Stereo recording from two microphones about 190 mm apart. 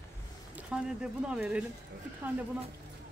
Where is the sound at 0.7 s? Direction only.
5° right (ahead or behind).